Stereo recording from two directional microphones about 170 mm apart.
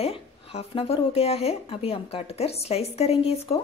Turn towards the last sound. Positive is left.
turn(degrees=35)  # may be behind; listen again after turning